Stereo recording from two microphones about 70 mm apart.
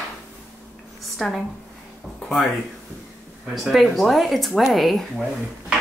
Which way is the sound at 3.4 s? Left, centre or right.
Centre.